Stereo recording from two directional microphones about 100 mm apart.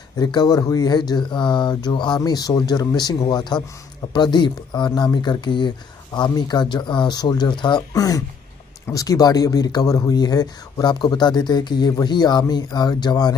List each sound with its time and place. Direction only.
0.2 s speech: 45° left (ahead or behind)